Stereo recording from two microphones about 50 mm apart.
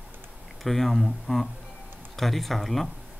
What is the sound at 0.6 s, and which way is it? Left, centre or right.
Speech, centre.